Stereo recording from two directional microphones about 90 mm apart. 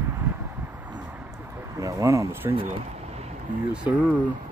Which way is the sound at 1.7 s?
40° right (ahead or behind).